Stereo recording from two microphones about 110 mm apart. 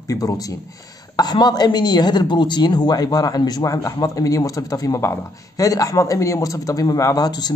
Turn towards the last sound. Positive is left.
turn(degrees=40)  # may be behind; listen again after turning